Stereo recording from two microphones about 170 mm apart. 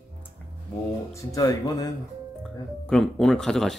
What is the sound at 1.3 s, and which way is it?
Speech, 20° left (ahead or behind).